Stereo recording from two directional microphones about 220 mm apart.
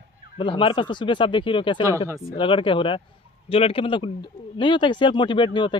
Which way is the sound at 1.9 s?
15° right (ahead or behind).